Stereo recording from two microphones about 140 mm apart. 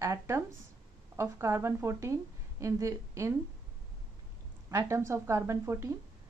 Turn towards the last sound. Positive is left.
turn(degrees=-20)  # may be behind; listen again after turning